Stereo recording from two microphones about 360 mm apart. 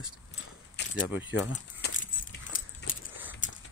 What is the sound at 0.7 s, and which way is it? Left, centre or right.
Keys jangling, left.